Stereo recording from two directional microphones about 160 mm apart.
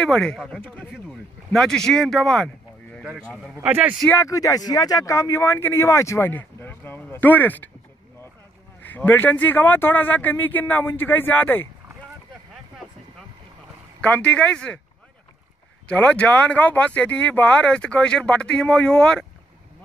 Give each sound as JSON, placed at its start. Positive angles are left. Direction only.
{"t": 0.0, "sound": "speech", "side_deg": 5}
{"t": 3.6, "sound": "speech", "side_deg": -10}
{"t": 4.2, "sound": "speech", "side_deg": 20}
{"t": 8.8, "sound": "speech", "side_deg": 10}
{"t": 14.0, "sound": "speech", "side_deg": 5}
{"t": 15.9, "sound": "speech", "side_deg": 10}